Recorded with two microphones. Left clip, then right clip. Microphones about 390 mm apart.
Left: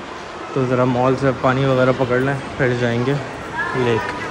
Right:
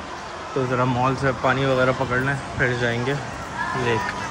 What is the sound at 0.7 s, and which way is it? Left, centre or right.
Speech, left.